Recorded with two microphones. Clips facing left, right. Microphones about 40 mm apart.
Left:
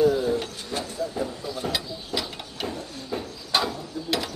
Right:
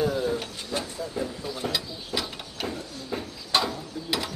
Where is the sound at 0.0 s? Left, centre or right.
Centre.